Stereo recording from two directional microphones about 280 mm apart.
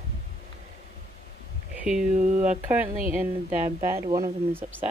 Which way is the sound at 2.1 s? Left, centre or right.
Right.